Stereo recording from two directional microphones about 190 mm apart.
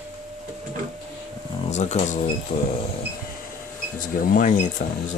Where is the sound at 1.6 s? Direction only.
35° left (ahead or behind).